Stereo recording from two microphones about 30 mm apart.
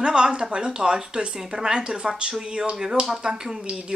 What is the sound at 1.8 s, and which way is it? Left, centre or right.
Speech, right.